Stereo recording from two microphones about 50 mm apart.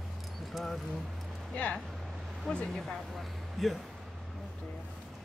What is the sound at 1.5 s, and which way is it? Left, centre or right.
Speech, left.